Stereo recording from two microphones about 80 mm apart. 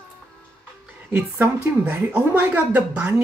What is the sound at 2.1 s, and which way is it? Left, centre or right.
Speech, centre.